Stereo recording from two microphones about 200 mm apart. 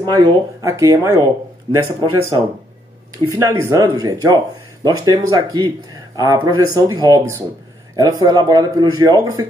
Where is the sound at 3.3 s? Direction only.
15° right (ahead or behind).